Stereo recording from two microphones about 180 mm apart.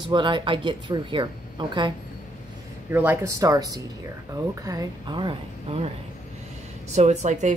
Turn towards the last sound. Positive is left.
turn(degrees=-40)  # may be behind; listen again after turning